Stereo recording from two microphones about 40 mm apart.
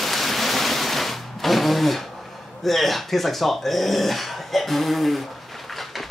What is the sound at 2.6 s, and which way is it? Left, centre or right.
Speech, centre.